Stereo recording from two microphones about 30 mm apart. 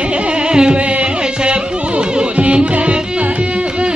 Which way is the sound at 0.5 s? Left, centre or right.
Right.